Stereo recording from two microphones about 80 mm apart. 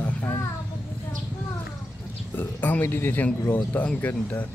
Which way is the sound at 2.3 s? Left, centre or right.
Left.